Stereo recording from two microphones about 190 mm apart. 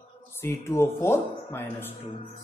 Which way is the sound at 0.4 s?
15° left (ahead or behind).